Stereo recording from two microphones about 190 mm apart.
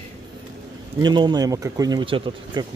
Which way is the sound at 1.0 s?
20° right (ahead or behind).